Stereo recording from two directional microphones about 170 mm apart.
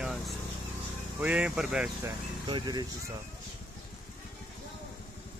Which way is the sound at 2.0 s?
25° right (ahead or behind).